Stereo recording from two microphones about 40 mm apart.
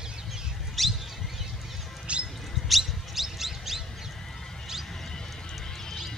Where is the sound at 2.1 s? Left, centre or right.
Right.